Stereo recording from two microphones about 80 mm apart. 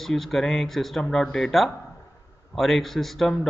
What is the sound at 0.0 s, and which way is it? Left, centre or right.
A man's voice, centre.